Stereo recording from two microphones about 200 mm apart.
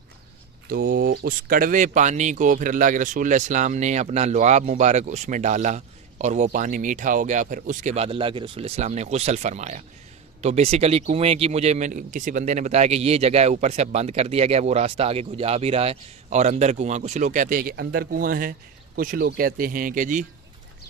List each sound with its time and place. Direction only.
0.7 s speech: 50° right (ahead or behind)